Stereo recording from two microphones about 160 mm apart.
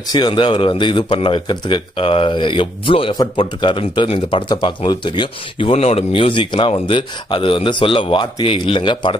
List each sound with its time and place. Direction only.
0.1 s speech: 30° left (ahead or behind)